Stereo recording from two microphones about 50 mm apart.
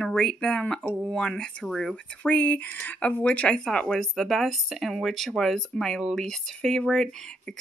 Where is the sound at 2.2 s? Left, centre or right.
Left.